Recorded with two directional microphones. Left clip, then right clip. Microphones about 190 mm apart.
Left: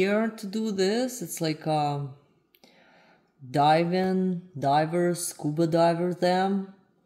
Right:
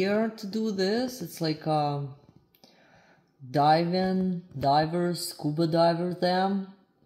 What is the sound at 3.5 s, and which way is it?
Speech, centre (ahead or behind).